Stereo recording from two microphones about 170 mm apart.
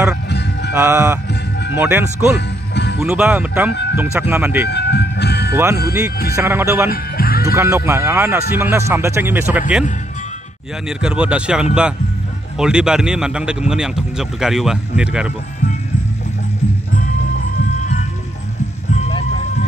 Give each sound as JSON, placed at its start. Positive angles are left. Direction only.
{"t": 0.3, "sound": "music", "side_deg": 85}
{"t": 0.7, "sound": "speech", "side_deg": -10}
{"t": 2.3, "sound": "music", "side_deg": 90}
{"t": 3.0, "sound": "speech", "side_deg": -5}
{"t": 4.6, "sound": "speech", "side_deg": 80}
{"t": 5.5, "sound": "speech", "side_deg": -15}
{"t": 6.9, "sound": "music", "side_deg": 60}
{"t": 7.4, "sound": "speech", "side_deg": -15}
{"t": 10.9, "sound": "speech", "side_deg": -5}
{"t": 18.9, "sound": "music", "side_deg": 35}